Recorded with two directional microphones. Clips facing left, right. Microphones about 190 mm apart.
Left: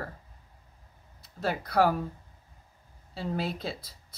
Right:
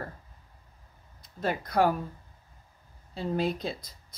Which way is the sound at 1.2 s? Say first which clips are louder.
Right 1 dB; 5° left (ahead or behind).